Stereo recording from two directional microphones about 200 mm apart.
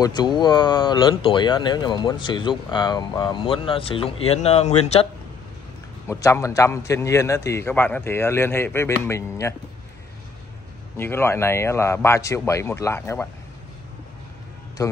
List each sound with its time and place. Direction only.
0.0 s speech: 20° left (ahead or behind)
6.0 s a man's voice: 15° left (ahead or behind)
11.0 s a man's voice: 10° left (ahead or behind)
14.8 s speech: 15° left (ahead or behind)